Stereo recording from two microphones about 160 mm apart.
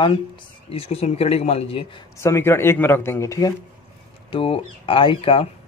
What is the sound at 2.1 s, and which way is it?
Speech, 15° left (ahead or behind).